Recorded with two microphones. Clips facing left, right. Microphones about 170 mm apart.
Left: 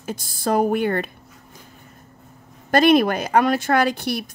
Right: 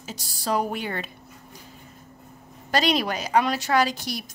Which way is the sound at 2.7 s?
55° left (ahead or behind).